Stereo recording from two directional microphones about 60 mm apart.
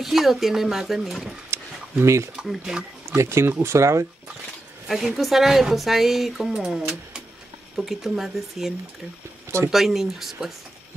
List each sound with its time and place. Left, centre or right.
0.0 s speech: centre
1.5 s a sound: right
2.3 s speech: centre
3.2 s speech: right
4.8 s speech: centre